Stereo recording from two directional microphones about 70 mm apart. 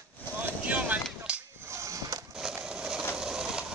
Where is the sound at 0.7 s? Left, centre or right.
Centre.